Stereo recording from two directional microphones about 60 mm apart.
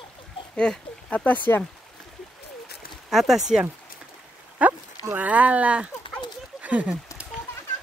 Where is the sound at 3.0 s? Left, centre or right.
Centre.